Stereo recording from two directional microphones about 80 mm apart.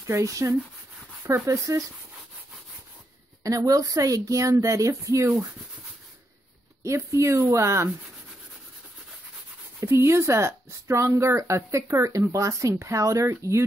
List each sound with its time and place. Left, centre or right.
0.0 s speech: right
3.4 s speech: right
6.8 s speech: right
9.8 s speech: right